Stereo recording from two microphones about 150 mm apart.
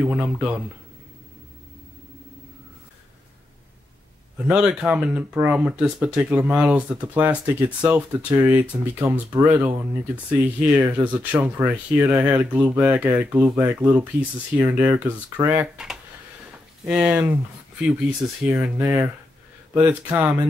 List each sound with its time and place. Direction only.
0.0 s speech: 10° right (ahead or behind)
4.4 s speech: 5° right (ahead or behind)
16.8 s speech: 5° right (ahead or behind)